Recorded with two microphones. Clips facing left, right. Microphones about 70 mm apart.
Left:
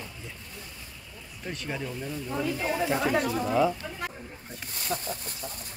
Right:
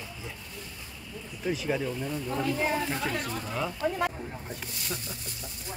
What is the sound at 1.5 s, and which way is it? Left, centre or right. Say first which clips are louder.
A woman's voice: right 5 dB; centre.